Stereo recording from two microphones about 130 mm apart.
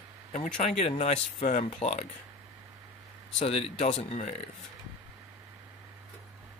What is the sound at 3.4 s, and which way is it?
Speech, 55° left (ahead or behind).